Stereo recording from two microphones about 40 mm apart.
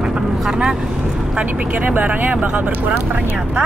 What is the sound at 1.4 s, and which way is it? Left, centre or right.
Speech, right.